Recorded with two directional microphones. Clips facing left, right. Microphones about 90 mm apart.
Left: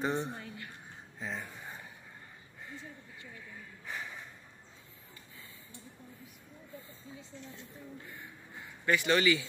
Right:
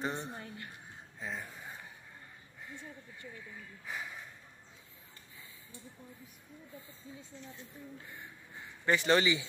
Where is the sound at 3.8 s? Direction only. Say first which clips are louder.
Even; centre (ahead or behind).